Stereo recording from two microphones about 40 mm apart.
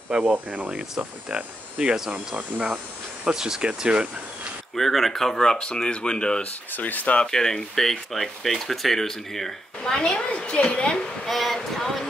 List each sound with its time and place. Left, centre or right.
0.1 s hum: right
0.5 s speech: right
1.3 s hum: right
2.1 s speech: right
3.3 s speech: centre
3.6 s hum: right
4.7 s speech: centre; by 6.5 s left
6.7 s speech: left
7.2 s speech: centre
10.3 s speech: left
11.2 s a sound: centre